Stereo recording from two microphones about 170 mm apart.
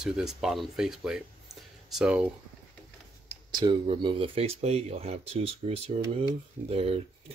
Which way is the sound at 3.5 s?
25° right (ahead or behind).